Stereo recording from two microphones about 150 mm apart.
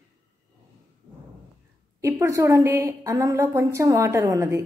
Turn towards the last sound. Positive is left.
turn(degrees=-20)  # may be behind; listen again after turning